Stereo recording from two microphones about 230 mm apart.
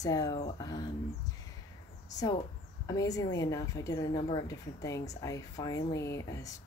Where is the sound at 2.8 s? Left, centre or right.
Centre.